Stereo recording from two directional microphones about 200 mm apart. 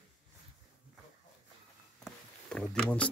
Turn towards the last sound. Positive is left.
turn(degrees=5)  # may be behind; listen again after turning